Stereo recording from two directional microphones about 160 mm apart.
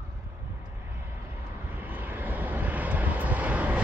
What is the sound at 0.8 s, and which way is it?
Vehicle, 15° right (ahead or behind).